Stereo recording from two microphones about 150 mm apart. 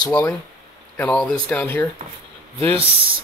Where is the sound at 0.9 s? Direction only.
10° left (ahead or behind).